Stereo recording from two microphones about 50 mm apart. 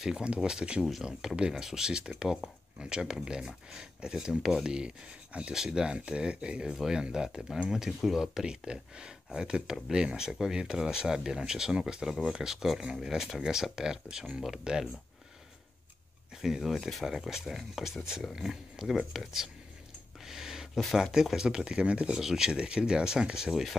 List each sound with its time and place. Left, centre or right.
0.0 s speech: centre
16.3 s speech: centre
20.2 s a sound: centre
21.0 s speech: centre
22.1 s speech: centre